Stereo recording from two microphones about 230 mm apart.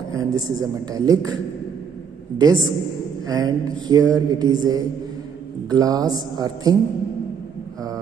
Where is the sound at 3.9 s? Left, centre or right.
Centre.